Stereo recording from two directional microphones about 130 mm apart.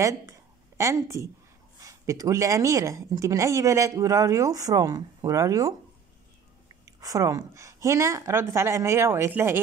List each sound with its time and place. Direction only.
0.0 s a sound: 25° right (ahead or behind)
1.8 s a woman's voice: 25° right (ahead or behind)
7.0 s a woman's voice: 25° right (ahead or behind)